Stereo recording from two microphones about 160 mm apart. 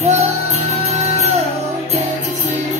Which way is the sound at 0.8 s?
40° right (ahead or behind).